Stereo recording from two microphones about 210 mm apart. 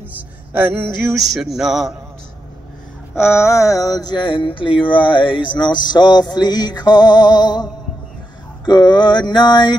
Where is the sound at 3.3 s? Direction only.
15° left (ahead or behind).